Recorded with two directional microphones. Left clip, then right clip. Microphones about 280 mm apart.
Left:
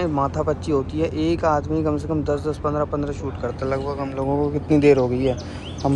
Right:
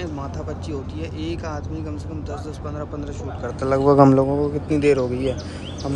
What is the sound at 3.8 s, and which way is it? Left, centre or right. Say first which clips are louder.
Speech: right 13 dB; right.